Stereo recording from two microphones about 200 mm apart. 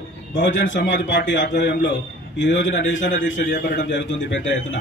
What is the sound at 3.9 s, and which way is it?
Speech, 65° left (ahead or behind).